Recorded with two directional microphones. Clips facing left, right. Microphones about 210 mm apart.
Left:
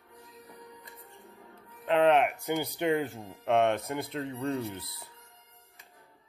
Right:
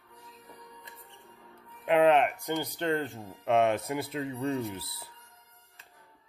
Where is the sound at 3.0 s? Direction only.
Centre (ahead or behind).